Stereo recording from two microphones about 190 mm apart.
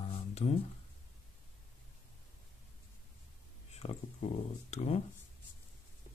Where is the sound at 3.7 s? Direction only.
35° left (ahead or behind).